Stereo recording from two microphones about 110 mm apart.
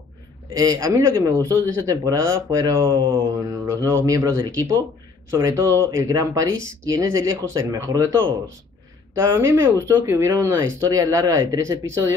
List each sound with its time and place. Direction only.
0.6 s speech: 35° right (ahead or behind)